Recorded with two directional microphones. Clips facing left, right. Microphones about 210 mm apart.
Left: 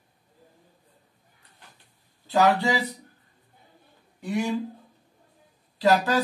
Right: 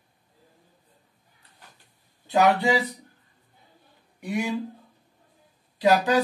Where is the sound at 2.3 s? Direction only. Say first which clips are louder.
Right 1 dB; 20° right (ahead or behind).